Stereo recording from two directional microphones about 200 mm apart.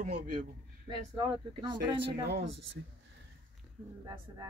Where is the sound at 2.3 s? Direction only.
60° right (ahead or behind).